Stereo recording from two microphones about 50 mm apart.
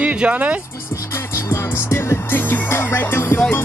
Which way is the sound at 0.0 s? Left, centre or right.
Right.